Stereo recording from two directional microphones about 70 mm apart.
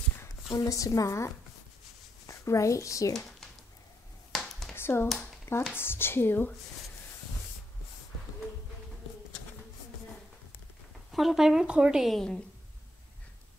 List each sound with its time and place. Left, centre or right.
0.5 s a woman's voice: left
3.1 s speech: centre
4.3 s a sound: centre
4.7 s finger snapping: left
5.0 s speech: centre
5.7 s a woman's voice: left
11.1 s speech: centre